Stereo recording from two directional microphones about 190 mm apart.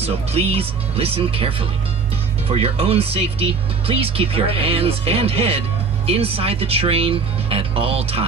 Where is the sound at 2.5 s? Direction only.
30° right (ahead or behind).